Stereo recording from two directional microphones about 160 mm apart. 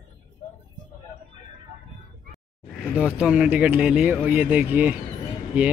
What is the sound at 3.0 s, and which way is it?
Speech, 5° right (ahead or behind).